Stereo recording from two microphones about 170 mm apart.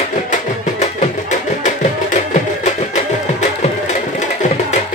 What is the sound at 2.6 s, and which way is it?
Music, 40° left (ahead or behind).